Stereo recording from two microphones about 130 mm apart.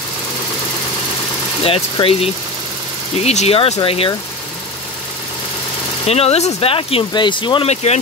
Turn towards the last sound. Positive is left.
turn(degrees=40)  # may be behind; listen again after turning